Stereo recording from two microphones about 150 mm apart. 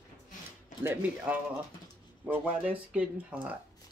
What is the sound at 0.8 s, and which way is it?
Speech, 10° right (ahead or behind).